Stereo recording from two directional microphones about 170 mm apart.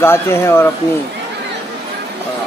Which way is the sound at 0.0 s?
15° left (ahead or behind).